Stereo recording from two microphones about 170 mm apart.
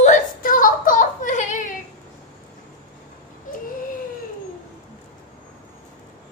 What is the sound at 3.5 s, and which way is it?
Baby cry, 50° left (ahead or behind).